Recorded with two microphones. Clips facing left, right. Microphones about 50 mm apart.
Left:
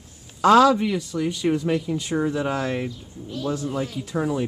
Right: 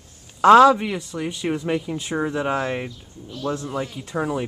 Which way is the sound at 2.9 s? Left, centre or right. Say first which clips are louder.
Left 3 dB; centre.